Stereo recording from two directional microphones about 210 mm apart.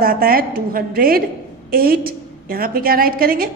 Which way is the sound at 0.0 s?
45° right (ahead or behind).